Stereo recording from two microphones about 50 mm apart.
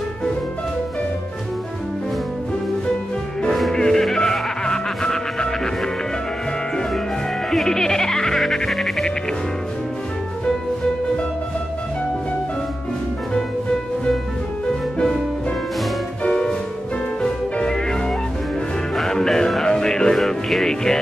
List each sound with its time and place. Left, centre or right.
3.7 s music: centre
7.5 s music: centre
16.3 s music: centre
20.2 s music: centre